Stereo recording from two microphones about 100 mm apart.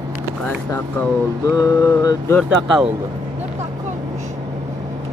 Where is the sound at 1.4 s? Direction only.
35° left (ahead or behind).